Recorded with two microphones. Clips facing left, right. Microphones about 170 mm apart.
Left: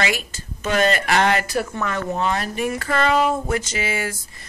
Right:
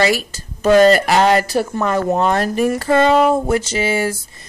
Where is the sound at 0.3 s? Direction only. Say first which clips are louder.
Right 11 dB; 35° right (ahead or behind).